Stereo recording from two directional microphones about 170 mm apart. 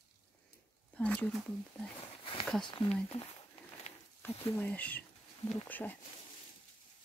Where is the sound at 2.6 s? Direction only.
30° left (ahead or behind).